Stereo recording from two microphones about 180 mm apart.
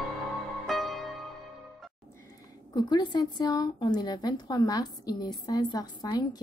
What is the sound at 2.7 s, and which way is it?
A woman's voice, 25° left (ahead or behind).